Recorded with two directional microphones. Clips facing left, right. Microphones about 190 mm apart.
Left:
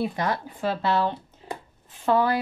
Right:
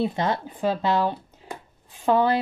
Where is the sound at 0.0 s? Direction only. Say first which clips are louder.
Right 2 dB; 25° right (ahead or behind).